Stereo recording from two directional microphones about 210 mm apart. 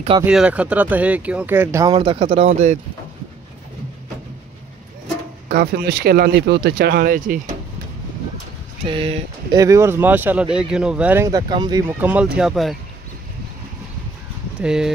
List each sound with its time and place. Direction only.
0.2 s speech: 5° right (ahead or behind); by 2.8 s 30° right (ahead or behind)
5.5 s speech: 50° right (ahead or behind)
8.8 s speech: 25° right (ahead or behind)
12.0 s speech: 5° right (ahead or behind)
14.6 s speech: 5° right (ahead or behind)